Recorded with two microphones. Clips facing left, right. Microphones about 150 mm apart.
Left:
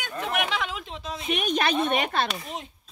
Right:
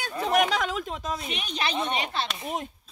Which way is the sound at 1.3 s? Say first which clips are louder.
Left 9 dB; 55° left (ahead or behind).